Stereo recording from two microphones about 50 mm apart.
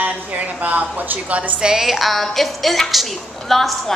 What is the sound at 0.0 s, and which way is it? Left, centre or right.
A woman's voice, right.